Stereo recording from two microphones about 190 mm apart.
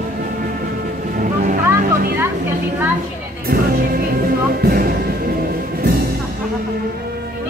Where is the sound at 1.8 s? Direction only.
50° right (ahead or behind).